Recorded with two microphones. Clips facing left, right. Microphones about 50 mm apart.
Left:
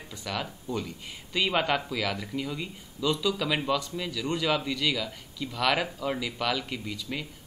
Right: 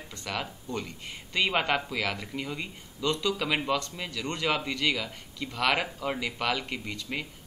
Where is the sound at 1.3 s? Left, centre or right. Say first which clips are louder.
Even; centre.